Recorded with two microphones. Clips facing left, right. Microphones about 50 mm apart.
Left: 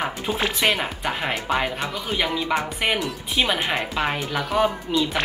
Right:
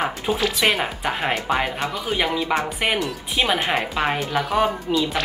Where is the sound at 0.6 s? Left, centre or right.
Centre.